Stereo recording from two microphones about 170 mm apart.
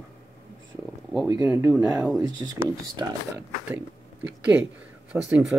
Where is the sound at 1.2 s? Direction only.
20° right (ahead or behind).